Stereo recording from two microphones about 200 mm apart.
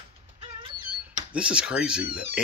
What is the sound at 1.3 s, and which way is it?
Speech, 5° right (ahead or behind).